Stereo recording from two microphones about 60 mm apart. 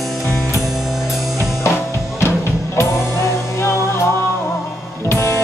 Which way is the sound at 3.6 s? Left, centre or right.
Left.